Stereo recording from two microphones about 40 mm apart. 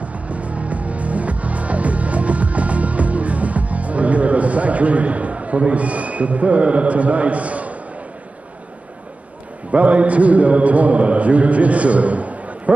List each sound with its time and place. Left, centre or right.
0.0 s music: right
9.7 s mantra: right